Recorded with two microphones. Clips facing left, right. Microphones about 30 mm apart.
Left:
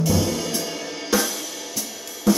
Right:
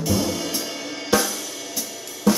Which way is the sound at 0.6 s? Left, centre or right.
Centre.